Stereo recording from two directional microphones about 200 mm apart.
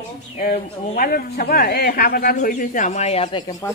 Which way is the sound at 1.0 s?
50° left (ahead or behind).